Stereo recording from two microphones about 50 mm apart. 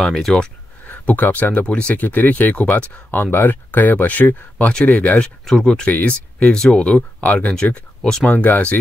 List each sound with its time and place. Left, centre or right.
0.0 s speech: centre
0.8 s speech: left
2.0 s speech: left
5.4 s speech: centre
5.9 s speech: left
6.5 s speech: centre
8.3 s speech: left